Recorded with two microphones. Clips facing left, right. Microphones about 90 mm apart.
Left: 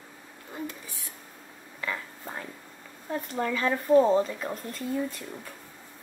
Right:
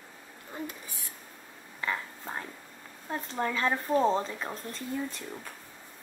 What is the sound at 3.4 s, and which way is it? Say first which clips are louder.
Speech: left 1 dB; 30° right (ahead or behind).